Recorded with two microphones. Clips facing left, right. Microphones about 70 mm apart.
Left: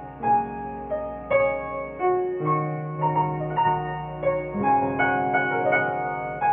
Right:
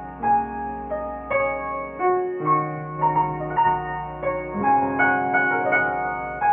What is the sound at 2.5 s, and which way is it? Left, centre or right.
Music, right.